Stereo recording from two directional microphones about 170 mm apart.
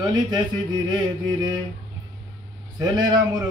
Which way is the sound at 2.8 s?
25° right (ahead or behind).